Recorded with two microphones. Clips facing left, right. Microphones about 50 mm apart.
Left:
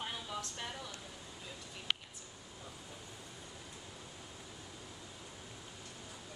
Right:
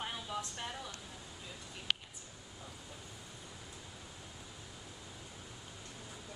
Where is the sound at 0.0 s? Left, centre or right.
Centre.